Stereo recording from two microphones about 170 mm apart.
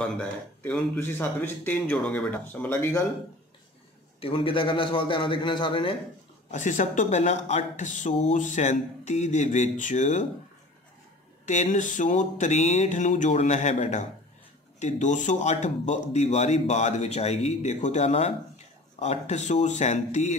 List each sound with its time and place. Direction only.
0.0 s speech: 5° left (ahead or behind)
4.2 s a man's voice: 30° left (ahead or behind)
6.5 s speech: 45° left (ahead or behind)
11.4 s speech: 45° left (ahead or behind)